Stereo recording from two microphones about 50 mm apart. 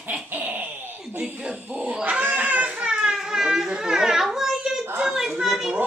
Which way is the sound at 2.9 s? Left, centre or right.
Centre.